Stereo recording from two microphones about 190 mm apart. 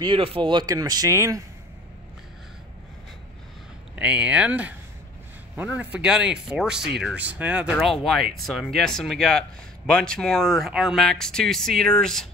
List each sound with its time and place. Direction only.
0.0 s speech: 30° right (ahead or behind)
3.9 s speech: 5° right (ahead or behind)